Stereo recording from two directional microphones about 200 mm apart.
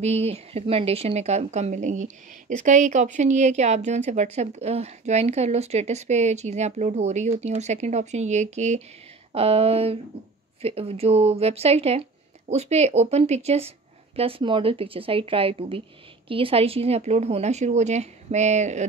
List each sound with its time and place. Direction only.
0.0 s speech: 30° right (ahead or behind)